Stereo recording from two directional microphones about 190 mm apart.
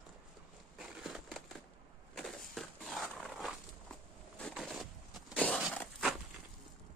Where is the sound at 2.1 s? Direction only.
Centre (ahead or behind).